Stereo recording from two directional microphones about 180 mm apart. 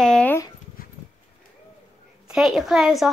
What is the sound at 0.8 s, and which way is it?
Dog, 55° left (ahead or behind).